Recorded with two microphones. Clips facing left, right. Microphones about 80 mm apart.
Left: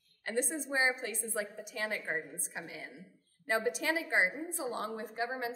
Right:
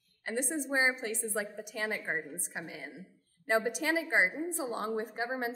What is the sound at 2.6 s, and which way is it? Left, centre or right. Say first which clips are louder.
A woman's voice: right 2 dB; right.